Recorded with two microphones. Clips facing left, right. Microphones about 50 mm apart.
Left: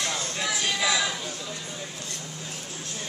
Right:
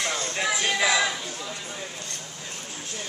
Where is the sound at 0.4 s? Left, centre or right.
Right.